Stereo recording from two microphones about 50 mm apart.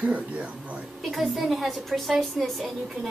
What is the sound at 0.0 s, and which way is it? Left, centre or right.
Speech, right.